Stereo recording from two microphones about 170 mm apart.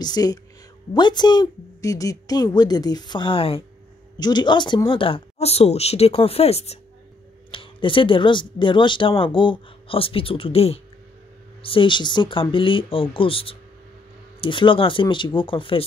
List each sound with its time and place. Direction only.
0.0 s a woman's voice: 25° left (ahead or behind)